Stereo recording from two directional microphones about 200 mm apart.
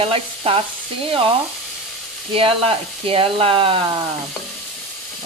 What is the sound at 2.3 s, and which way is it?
A woman's voice, 30° right (ahead or behind).